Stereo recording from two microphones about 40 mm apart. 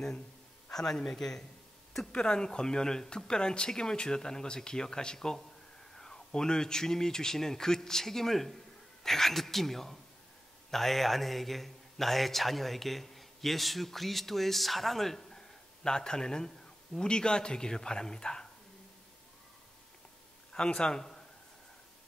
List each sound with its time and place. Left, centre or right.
0.7 s a woman's voice: centre
20.5 s speech: left